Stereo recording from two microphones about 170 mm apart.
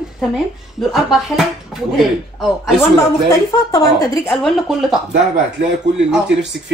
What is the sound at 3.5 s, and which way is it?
Speech, 20° left (ahead or behind).